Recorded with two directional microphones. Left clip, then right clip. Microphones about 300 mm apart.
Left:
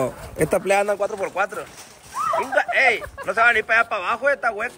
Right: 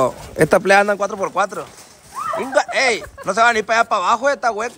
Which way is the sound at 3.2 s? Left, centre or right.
Left.